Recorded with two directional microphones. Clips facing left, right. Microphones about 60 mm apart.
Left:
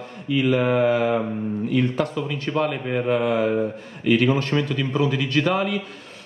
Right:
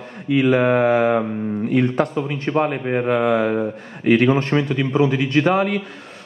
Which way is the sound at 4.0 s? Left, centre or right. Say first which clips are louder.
Right 4 dB; right.